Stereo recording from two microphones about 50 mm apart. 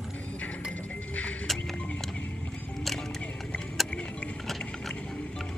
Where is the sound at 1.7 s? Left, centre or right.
Left.